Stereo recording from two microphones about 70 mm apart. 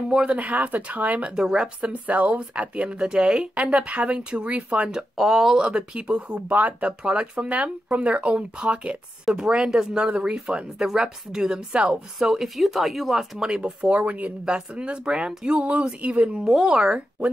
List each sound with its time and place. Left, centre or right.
0.1 s speech: centre
1.4 s speech: centre
1.8 s speech: centre
5.1 s speech: centre
5.6 s speech: centre